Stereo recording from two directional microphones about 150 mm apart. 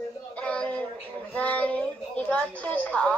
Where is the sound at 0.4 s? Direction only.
10° left (ahead or behind).